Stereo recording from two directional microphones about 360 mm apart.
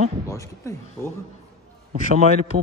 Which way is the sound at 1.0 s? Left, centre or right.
Centre.